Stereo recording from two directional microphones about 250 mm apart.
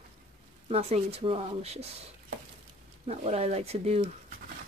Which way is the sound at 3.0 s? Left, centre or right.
Right.